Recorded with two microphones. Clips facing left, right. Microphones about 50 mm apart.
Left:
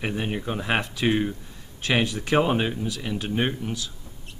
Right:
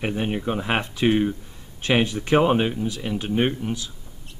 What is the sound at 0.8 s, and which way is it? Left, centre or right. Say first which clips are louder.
Speech: right 3 dB; right.